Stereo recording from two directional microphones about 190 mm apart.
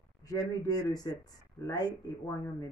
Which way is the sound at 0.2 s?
20° left (ahead or behind).